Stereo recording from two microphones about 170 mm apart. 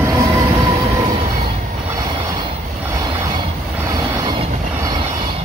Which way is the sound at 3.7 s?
20° right (ahead or behind).